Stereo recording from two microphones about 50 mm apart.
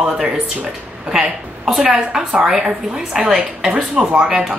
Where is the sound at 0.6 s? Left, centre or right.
Centre.